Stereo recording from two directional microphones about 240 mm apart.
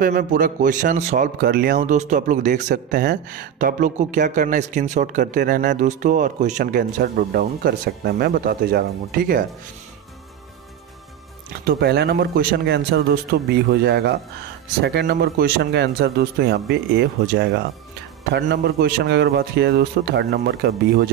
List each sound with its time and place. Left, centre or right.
0.0 s a man's voice: right
11.6 s speech: right